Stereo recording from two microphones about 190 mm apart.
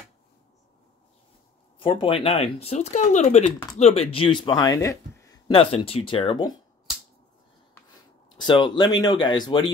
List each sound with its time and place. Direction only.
1.8 s speech: 25° left (ahead or behind)
5.5 s speech: 30° left (ahead or behind)
8.4 s speech: 25° left (ahead or behind)